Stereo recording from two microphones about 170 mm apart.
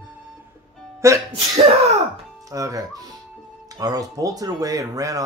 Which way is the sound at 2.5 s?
20° right (ahead or behind).